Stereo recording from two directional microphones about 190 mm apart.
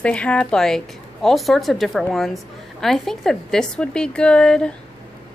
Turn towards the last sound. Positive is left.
turn(degrees=5)  # may be behind; listen again after turning